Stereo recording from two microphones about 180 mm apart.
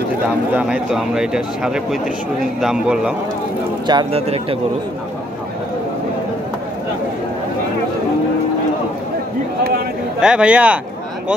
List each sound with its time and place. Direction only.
0.5 s speech: 5° right (ahead or behind)
3.8 s speech: 25° right (ahead or behind)
9.6 s a sound: 60° right (ahead or behind)
10.2 s speech: 5° right (ahead or behind)